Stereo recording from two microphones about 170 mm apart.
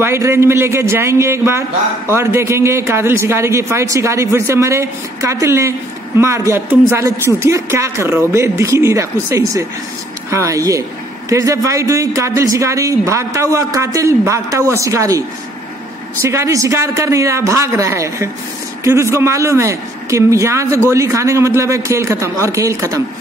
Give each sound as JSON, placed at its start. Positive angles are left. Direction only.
{"t": 0.0, "sound": "a man's voice", "side_deg": -15}